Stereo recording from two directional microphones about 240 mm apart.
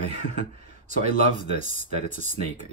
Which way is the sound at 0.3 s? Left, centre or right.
Right.